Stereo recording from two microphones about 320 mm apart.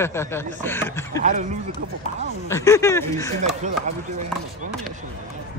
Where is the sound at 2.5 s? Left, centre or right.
Centre.